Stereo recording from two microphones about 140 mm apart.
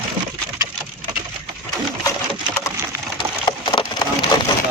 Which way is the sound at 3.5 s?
30° left (ahead or behind).